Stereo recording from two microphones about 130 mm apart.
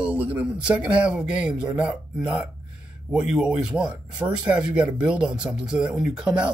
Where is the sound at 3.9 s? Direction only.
35° right (ahead or behind).